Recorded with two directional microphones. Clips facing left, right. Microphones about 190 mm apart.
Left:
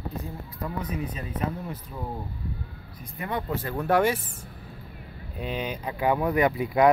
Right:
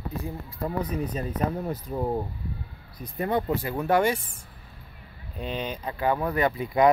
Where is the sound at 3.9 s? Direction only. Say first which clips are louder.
Even; centre (ahead or behind).